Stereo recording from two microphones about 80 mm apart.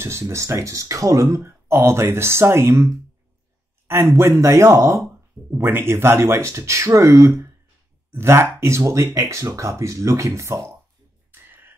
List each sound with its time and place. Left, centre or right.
0.0 s speech: right
11.4 s whispering: right